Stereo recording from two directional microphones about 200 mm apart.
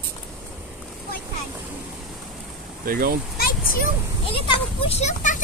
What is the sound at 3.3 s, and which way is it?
Speech, 45° left (ahead or behind).